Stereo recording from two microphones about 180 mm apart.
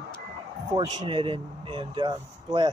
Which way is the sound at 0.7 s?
25° right (ahead or behind).